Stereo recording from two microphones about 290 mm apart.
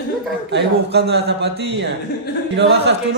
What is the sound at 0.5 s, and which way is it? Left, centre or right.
A man's voice, right.